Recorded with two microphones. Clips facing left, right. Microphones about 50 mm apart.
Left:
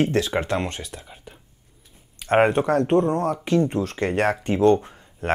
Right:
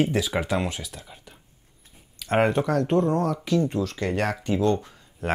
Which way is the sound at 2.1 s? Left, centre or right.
Left.